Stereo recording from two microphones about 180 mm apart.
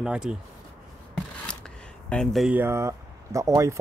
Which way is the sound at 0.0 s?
5° right (ahead or behind).